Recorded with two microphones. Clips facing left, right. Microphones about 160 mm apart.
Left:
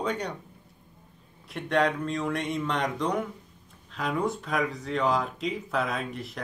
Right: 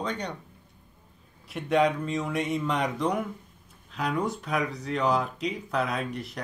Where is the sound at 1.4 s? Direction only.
Centre (ahead or behind).